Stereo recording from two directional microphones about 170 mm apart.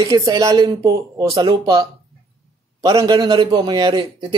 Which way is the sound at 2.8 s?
25° right (ahead or behind).